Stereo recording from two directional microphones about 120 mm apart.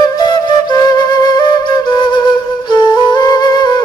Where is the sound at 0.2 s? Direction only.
35° left (ahead or behind).